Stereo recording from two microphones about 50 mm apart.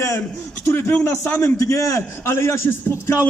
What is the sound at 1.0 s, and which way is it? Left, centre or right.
Speech, left.